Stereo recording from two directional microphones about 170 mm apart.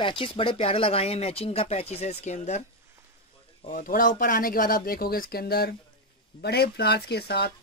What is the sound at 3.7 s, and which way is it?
Speech, 55° left (ahead or behind).